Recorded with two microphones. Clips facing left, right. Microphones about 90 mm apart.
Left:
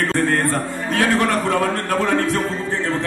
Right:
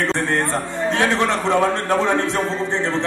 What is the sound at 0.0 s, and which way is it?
A man's voice, 20° right (ahead or behind).